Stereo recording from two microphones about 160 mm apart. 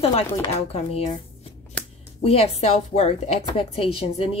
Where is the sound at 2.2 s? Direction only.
40° left (ahead or behind).